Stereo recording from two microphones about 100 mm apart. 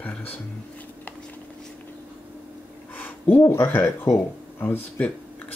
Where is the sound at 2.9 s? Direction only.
20° left (ahead or behind).